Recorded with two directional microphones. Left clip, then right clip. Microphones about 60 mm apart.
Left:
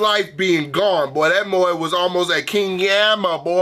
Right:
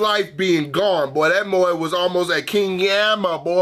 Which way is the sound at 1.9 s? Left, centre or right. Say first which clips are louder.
Left 1 dB; centre.